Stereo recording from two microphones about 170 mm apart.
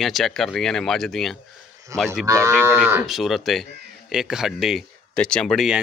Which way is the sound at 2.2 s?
20° right (ahead or behind).